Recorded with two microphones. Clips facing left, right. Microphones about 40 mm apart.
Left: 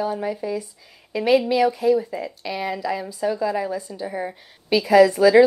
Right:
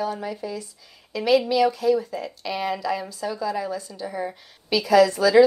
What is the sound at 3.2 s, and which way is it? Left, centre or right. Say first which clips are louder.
A woman's voice: left 8 dB; left.